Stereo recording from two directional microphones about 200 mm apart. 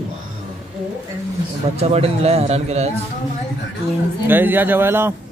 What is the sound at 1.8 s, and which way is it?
Speech, 30° right (ahead or behind).